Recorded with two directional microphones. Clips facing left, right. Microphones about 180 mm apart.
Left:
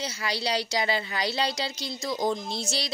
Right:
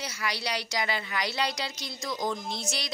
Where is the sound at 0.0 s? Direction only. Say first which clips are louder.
Left 3 dB; 30° left (ahead or behind).